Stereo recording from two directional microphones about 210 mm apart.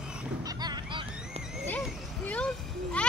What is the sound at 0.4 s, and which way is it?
Goose, 20° right (ahead or behind).